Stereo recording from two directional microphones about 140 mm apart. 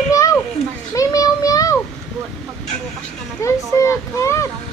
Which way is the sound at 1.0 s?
25° left (ahead or behind).